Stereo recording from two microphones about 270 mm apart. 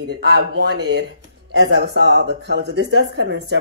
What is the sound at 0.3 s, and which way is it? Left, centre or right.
Speech, right.